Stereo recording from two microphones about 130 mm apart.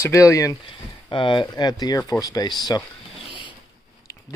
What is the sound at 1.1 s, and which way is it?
Speech, 40° left (ahead or behind).